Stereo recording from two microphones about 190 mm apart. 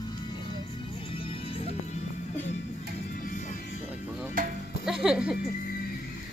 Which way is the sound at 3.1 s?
45° left (ahead or behind).